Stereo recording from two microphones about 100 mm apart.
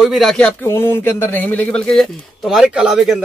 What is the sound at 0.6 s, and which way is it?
Speech, 25° left (ahead or behind).